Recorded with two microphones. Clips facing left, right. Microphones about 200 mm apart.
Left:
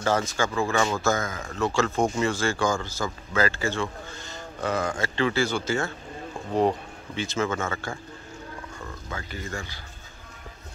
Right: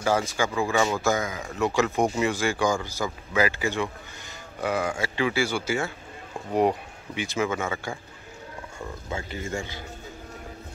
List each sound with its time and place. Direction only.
0.0 s speech: 10° right (ahead or behind)
9.1 s speech: 25° right (ahead or behind)